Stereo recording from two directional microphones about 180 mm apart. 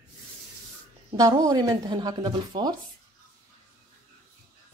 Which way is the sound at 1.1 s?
20° right (ahead or behind).